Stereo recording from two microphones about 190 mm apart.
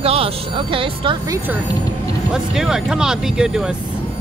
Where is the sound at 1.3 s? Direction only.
10° right (ahead or behind).